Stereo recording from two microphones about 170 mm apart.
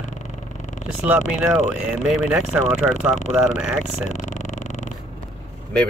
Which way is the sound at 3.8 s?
45° left (ahead or behind).